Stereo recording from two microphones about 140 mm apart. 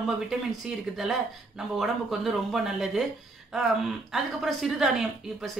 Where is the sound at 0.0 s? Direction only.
5° right (ahead or behind).